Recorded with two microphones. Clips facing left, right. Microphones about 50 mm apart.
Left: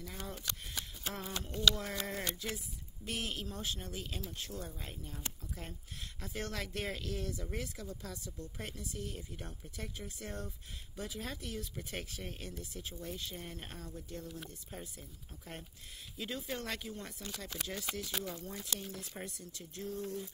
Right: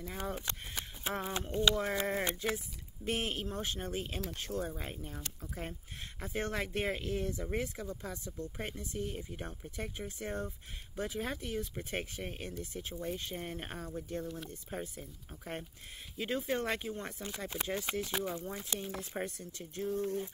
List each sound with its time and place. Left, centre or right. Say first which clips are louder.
0.0 s speech: right 5 dB; right
19.9 s speech: right 6 dB; right